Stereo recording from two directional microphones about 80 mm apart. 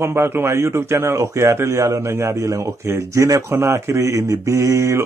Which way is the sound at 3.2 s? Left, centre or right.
Right.